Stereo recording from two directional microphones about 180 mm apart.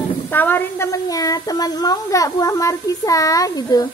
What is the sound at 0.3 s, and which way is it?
A child's voice, 10° left (ahead or behind).